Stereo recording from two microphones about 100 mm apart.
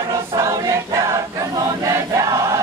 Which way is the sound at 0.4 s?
35° right (ahead or behind).